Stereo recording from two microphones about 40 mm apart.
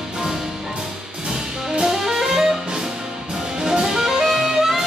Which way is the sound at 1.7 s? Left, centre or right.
Centre.